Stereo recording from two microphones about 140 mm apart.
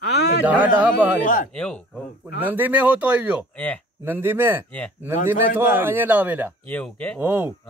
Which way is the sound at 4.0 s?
15° right (ahead or behind).